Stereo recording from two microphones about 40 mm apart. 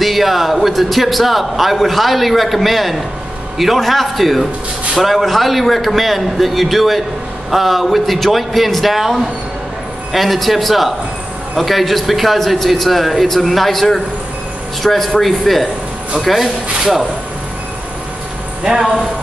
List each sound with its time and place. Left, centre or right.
0.0 s a man's voice: centre
18.6 s speech: centre